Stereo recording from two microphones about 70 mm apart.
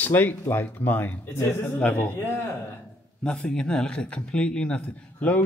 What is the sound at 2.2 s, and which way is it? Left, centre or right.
Speech, left.